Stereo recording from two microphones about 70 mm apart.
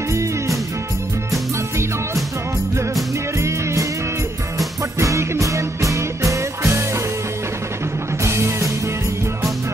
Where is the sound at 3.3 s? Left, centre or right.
Right.